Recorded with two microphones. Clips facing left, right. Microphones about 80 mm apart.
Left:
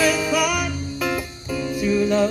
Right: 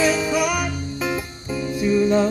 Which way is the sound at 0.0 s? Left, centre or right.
Right.